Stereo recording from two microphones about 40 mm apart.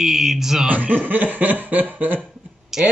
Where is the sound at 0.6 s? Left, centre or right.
Right.